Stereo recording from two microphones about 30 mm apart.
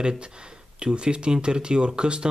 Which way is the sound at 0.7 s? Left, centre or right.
Right.